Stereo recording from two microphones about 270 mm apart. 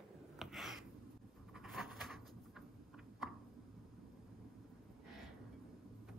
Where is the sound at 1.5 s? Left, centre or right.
Centre.